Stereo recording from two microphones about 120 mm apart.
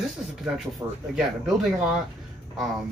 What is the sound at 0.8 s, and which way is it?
Speech, 30° right (ahead or behind).